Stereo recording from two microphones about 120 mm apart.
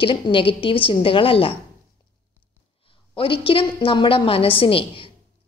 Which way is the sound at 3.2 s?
50° left (ahead or behind).